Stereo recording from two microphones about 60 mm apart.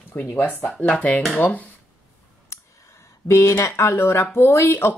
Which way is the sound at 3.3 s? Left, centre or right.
Left.